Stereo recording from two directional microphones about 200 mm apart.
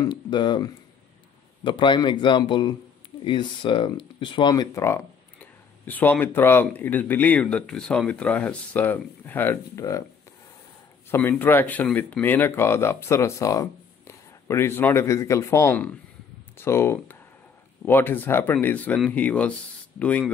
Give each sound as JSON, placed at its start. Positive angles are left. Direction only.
{"t": 0.0, "sound": "speech", "side_deg": 25}
{"t": 11.1, "sound": "speech", "side_deg": 10}